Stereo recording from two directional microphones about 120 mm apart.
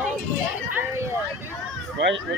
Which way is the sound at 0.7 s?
15° right (ahead or behind).